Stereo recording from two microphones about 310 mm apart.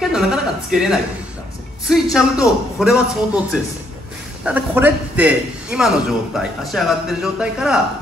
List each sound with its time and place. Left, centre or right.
0.1 s a man's voice: centre